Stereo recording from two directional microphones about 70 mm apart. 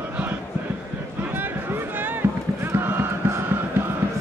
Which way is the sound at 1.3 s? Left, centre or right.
Right.